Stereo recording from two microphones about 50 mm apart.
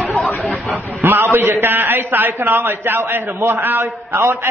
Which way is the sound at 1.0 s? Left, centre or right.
Right.